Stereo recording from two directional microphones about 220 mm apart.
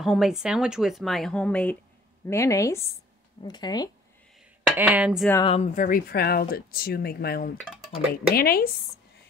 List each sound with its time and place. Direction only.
0.0 s a woman's voice: centre (ahead or behind); by 3.9 s 20° left (ahead or behind)
4.7 s speech: 5° right (ahead or behind)
5.4 s speech: 30° left (ahead or behind); by 7.5 s 45° left (ahead or behind)
7.5 s dishes: 5° right (ahead or behind)
8.1 s speech: 45° left (ahead or behind)